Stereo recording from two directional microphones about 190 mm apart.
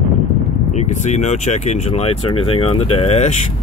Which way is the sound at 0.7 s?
40° left (ahead or behind).